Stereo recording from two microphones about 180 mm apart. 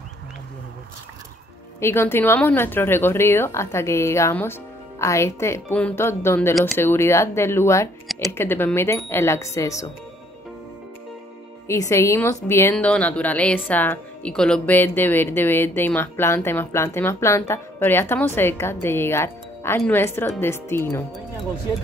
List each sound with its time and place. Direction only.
1.8 s speech: 15° left (ahead or behind)
11.6 s speech: 15° left (ahead or behind)